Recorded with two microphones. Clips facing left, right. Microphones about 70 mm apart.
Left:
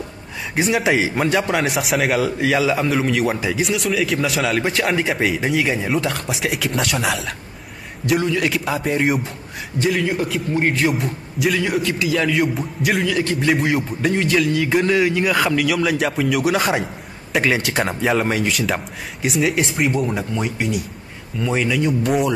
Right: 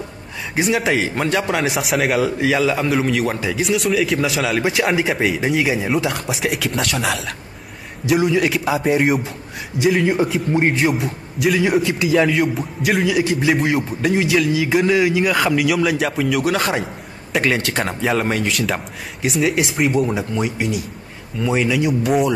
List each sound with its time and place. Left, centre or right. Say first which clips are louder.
0.6 s a man's voice: even; centre
8.4 s a man's voice: right 3 dB; centre
10.1 s a man's voice: right 3 dB; centre
10.7 s a man's voice: right 1 dB; centre
11.8 s a man's voice: right 2 dB; centre
12.1 s a man's voice: right 3 dB; centre
13.0 s a man's voice: right 2 dB; centre
13.5 s a man's voice: right 1 dB; centre